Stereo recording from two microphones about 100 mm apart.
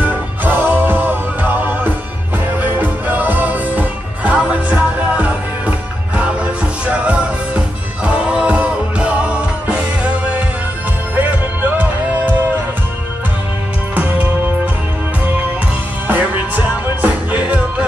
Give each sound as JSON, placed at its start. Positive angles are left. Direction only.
{"t": 0.0, "sound": "music", "side_deg": -20}
{"t": 2.8, "sound": "music", "side_deg": -20}
{"t": 13.9, "sound": "music", "side_deg": -15}
{"t": 16.1, "sound": "music", "side_deg": -15}